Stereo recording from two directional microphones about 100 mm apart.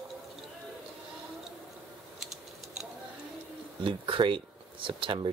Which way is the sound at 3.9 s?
60° right (ahead or behind).